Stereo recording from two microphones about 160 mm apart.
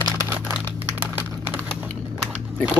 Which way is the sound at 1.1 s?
10° right (ahead or behind).